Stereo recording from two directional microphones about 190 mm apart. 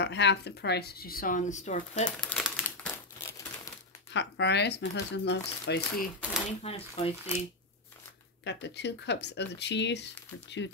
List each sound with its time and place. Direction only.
0.0 s speech: 65° left (ahead or behind); by 2.1 s 40° left (ahead or behind)
2.1 s typewriter: centre (ahead or behind)
4.1 s speech: 65° left (ahead or behind)
6.6 s speech: 30° left (ahead or behind)
8.5 s speech: 65° left (ahead or behind)